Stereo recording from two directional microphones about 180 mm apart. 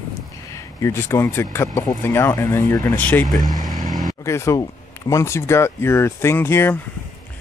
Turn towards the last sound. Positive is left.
turn(degrees=15)  # may be behind; listen again after turning